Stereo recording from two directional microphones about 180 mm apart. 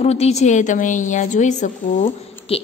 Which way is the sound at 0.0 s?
35° left (ahead or behind).